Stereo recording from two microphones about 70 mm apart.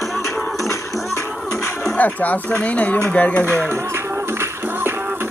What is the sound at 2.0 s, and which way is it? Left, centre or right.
Speech, left.